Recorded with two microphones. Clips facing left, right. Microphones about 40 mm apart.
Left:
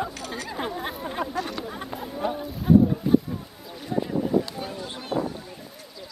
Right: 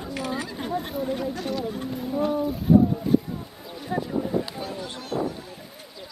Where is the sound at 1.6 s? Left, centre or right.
Left.